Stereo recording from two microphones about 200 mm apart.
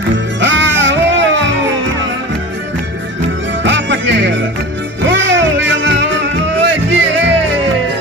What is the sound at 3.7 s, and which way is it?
Music, 65° right (ahead or behind).